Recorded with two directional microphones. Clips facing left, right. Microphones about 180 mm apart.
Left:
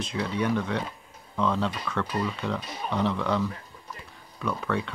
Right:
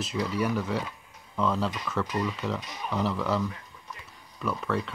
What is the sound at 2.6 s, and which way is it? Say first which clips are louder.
Speech: left 2 dB; 30° left (ahead or behind).